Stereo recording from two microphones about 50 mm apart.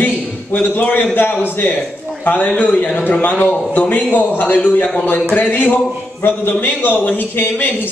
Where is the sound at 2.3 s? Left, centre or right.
Left.